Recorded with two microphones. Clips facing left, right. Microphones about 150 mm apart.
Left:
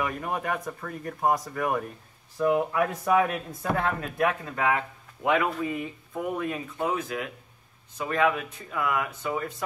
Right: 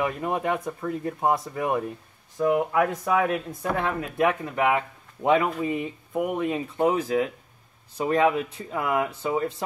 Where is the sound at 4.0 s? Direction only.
20° right (ahead or behind).